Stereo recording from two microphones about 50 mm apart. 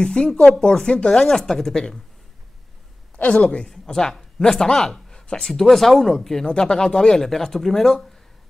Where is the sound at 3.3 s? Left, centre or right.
Centre.